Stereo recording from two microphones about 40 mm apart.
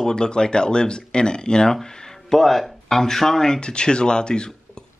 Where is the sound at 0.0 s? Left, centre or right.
Left.